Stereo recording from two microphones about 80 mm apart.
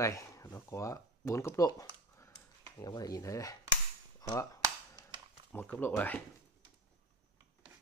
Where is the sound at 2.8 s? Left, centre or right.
Left.